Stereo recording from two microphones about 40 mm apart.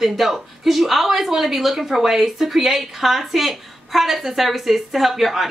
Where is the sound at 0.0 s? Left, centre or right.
Centre.